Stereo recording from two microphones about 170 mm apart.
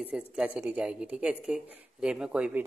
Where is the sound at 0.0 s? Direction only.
5° right (ahead or behind).